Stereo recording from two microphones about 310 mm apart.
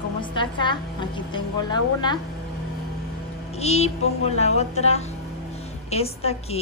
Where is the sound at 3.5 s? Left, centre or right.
Left.